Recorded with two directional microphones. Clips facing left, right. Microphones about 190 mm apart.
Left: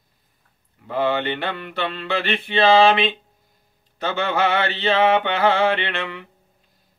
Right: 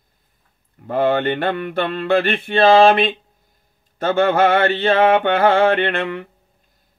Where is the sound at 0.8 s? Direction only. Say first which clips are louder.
Right 4 dB; 50° right (ahead or behind).